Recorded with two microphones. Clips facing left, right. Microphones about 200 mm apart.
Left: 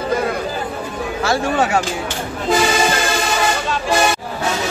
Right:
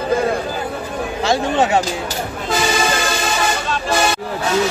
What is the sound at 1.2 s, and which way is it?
Speech, 20° right (ahead or behind).